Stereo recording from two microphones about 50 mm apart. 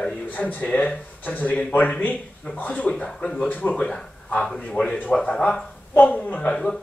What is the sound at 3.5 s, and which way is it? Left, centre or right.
Speech, left.